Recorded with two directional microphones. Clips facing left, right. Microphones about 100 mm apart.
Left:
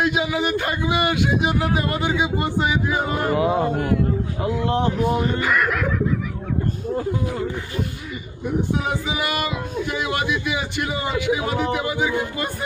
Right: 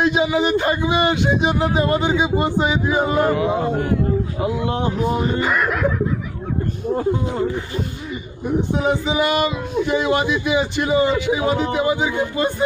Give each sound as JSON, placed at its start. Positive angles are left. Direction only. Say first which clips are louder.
{"t": 0.0, "sound": "speech", "louder": "right 4 dB", "side_deg": -25}
{"t": 3.3, "sound": "speech", "louder": "even", "side_deg": 30}
{"t": 4.4, "sound": "speech", "louder": "even", "side_deg": -5}
{"t": 5.2, "sound": "speech", "louder": "right 1 dB", "side_deg": -25}
{"t": 8.5, "sound": "speech", "louder": "right 4 dB", "side_deg": -25}